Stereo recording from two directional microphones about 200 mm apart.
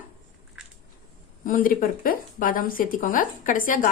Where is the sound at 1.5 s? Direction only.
45° left (ahead or behind).